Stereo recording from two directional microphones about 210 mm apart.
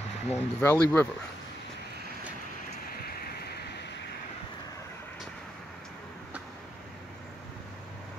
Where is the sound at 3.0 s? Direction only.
50° left (ahead or behind).